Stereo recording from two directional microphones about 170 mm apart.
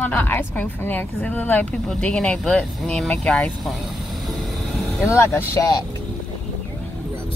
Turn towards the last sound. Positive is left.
turn(degrees=15)  # may be behind; listen again after turning